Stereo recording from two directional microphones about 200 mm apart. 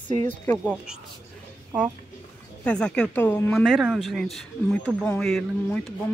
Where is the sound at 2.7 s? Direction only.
5° left (ahead or behind).